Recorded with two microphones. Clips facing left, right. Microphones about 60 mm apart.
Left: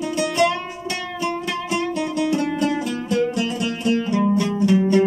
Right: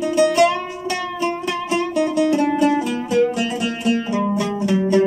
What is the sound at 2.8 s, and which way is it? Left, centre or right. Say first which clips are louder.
Music: right 3 dB; centre.